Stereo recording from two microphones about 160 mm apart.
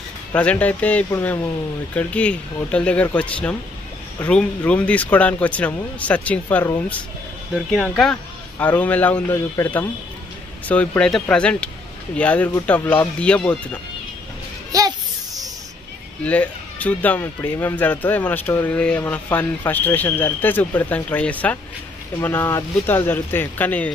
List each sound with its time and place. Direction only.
0.3 s speech: 10° left (ahead or behind)
7.7 s speech: centre (ahead or behind)
14.7 s children playing: 25° right (ahead or behind)
16.3 s speech: 10° left (ahead or behind)